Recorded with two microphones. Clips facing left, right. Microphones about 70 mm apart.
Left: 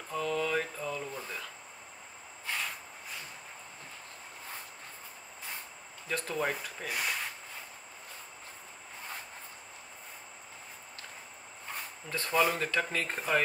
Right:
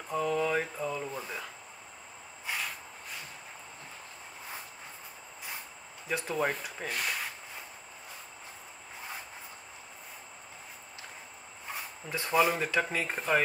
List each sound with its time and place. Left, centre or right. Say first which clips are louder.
0.1 s a sound: right 2 dB; centre
2.4 s vehicle: even; centre
6.0 s speech: right 2 dB; centre
11.7 s speech: right 1 dB; centre